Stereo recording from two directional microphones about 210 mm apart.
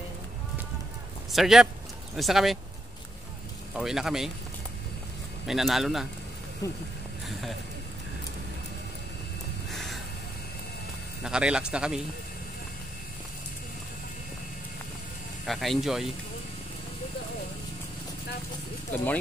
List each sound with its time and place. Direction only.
1.3 s a man's voice: centre (ahead or behind)
3.7 s a man's voice: centre (ahead or behind)
5.5 s a man's voice: centre (ahead or behind)
6.6 s speech: 15° left (ahead or behind)
9.7 s a sound: centre (ahead or behind)
11.2 s a man's voice: 5° right (ahead or behind)
15.4 s a man's voice: centre (ahead or behind)